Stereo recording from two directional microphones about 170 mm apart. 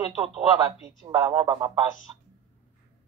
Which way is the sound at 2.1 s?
25° right (ahead or behind).